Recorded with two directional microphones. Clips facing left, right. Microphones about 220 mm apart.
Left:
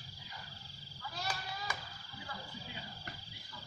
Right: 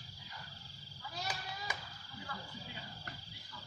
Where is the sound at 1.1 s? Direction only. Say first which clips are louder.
Left 1 dB; 20° right (ahead or behind).